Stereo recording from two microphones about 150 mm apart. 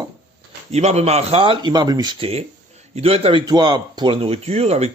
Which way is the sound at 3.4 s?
30° right (ahead or behind).